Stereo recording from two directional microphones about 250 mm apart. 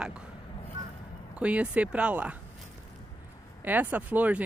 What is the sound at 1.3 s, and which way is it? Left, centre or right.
Speech, centre.